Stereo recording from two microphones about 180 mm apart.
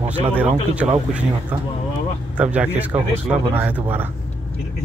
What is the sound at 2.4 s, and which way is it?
Speech, 5° right (ahead or behind).